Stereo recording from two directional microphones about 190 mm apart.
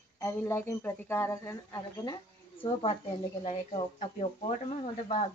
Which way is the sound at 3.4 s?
35° left (ahead or behind).